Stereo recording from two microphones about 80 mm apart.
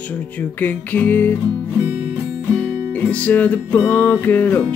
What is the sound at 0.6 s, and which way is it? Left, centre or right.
Music, left.